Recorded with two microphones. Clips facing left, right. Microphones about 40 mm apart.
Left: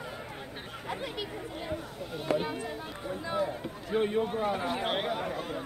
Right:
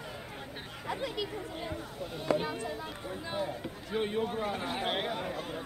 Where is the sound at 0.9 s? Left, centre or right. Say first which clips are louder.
Right 1 dB; left.